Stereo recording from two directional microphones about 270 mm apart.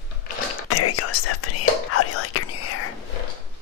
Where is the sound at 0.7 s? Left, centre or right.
Left.